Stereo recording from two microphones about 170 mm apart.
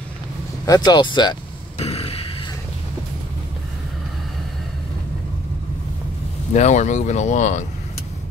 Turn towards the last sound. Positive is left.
turn(degrees=45)  # may be behind; listen again after turning